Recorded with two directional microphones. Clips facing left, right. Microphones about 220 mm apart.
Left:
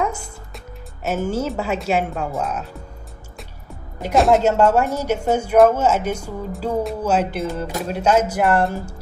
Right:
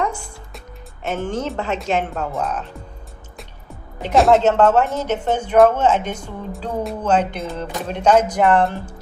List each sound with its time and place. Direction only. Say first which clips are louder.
1.0 s speech: left 2 dB; 5° left (ahead or behind)
4.0 s speech: right 1 dB; centre (ahead or behind)